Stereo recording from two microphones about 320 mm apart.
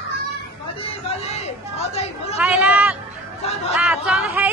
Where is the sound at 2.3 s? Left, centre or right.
Centre.